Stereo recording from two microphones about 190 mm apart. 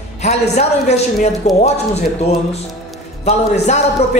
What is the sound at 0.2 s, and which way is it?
A man's voice, 35° left (ahead or behind).